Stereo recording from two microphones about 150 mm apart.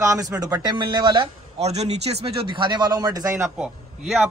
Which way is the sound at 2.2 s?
35° right (ahead or behind).